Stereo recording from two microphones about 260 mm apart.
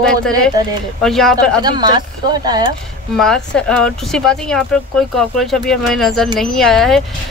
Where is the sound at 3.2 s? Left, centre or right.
Centre.